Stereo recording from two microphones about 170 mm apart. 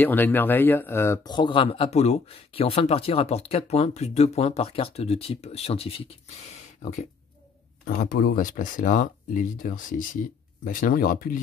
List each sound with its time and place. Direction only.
0.0 s speech: 10° left (ahead or behind); by 7.1 s 45° left (ahead or behind)
7.8 s speech: 60° left (ahead or behind)